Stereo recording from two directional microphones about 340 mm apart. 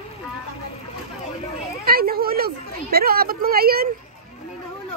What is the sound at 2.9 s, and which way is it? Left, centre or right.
Speech, right.